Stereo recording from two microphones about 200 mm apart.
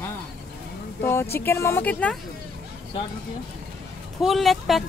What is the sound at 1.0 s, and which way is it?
Speech, 10° left (ahead or behind).